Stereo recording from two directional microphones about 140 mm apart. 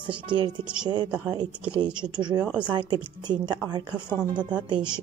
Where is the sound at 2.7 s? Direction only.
35° right (ahead or behind).